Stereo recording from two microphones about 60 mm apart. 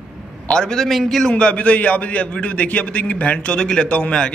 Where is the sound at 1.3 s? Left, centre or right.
Left.